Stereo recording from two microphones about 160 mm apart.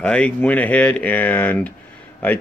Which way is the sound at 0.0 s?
5° left (ahead or behind).